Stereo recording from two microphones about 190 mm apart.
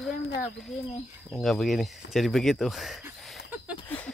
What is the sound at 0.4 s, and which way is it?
Speech, centre (ahead or behind).